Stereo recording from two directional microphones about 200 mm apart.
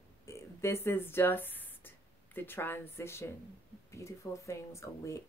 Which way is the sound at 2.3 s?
10° left (ahead or behind).